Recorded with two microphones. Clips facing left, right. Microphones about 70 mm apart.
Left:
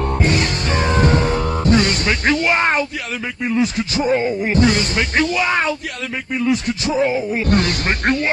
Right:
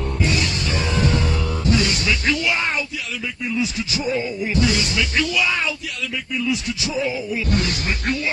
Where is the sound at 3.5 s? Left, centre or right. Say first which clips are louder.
Left 6 dB; left.